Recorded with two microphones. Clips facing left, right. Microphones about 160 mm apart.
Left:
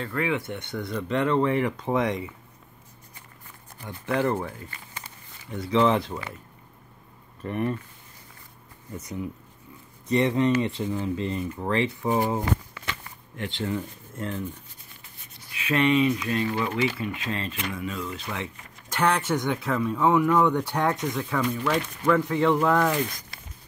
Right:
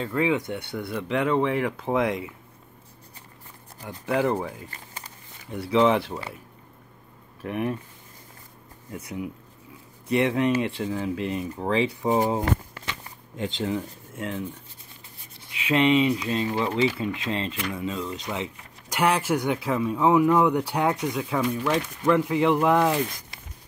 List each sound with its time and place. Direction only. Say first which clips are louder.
0.0 s speech: right 3 dB; 15° right (ahead or behind)
4.0 s speech: right 1 dB; 10° right (ahead or behind)
4.6 s a sound: even; 40° right (ahead or behind)
5.5 s speech: right 1 dB; 5° right (ahead or behind)
7.4 s speech: even; 5° right (ahead or behind)
8.9 s speech: even; 10° right (ahead or behind)
11.5 s speech: right 3 dB; 15° right (ahead or behind)
15.5 s speech: right 2 dB; 20° right (ahead or behind)
18.2 s a sound: right 2 dB; 20° right (ahead or behind)
18.9 s speech: right 1 dB; 10° right (ahead or behind)